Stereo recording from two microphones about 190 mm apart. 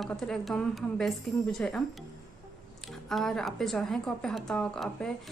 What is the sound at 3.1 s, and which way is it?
Speech, centre (ahead or behind).